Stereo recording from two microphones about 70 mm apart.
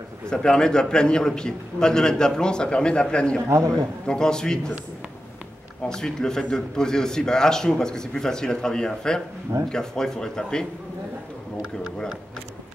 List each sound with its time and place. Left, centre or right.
0.3 s a man's voice: centre
3.4 s a man's voice: right
4.0 s a man's voice: centre
5.9 s a man's voice: centre